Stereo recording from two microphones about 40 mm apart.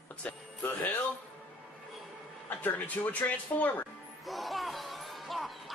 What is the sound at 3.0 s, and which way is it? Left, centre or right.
Speech, left.